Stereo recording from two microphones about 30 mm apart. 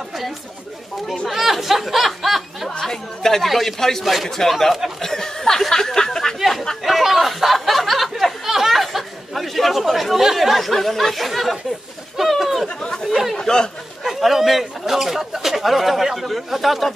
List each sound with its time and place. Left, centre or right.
1.3 s speech: centre
2.8 s speech: centre
3.4 s speech: centre
4.0 s speech: centre
5.0 s chuckle: centre
5.7 s a sound: centre
6.8 s a sound: centre
8.6 s chatter: centre
10.1 s speech: centre
12.2 s a sound: centre
13.1 s chatter: centre
13.4 s chatter: left
14.0 s speech: centre